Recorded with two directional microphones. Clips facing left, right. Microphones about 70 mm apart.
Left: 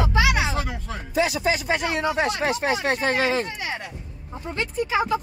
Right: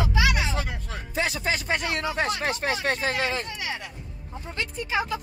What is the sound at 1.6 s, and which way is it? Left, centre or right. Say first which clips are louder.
Speech: left 3 dB; left.